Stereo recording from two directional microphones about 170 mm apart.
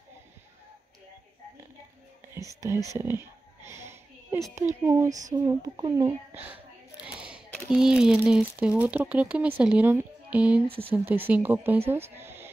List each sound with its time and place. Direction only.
2.3 s speech: 15° right (ahead or behind)
3.6 s wheeze: 15° right (ahead or behind)
4.8 s speech: 15° right (ahead or behind)
6.3 s a woman's voice: 10° right (ahead or behind)
7.1 s a sound: 5° right (ahead or behind)
7.5 s speech: centre (ahead or behind)